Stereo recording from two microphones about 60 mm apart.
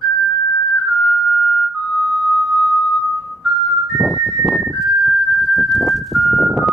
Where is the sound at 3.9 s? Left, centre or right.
Centre.